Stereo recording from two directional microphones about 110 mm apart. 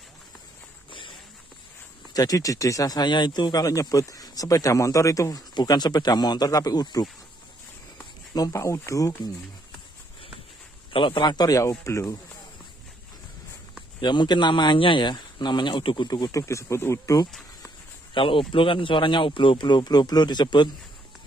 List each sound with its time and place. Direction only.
2.1 s speech: 35° left (ahead or behind)
5.5 s speech: 40° left (ahead or behind)
8.4 s speech: 30° left (ahead or behind)
10.9 s speech: 50° left (ahead or behind); by 12.2 s 25° left (ahead or behind)
14.0 s speech: 45° left (ahead or behind)
16.1 s speech: 35° left (ahead or behind)
18.1 s speech: 50° left (ahead or behind)